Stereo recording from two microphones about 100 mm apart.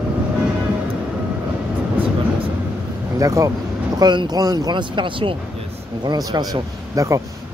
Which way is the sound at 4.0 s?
45° right (ahead or behind).